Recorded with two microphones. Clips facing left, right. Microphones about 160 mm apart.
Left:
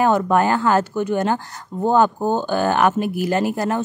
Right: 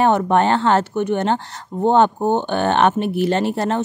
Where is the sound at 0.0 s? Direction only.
25° right (ahead or behind).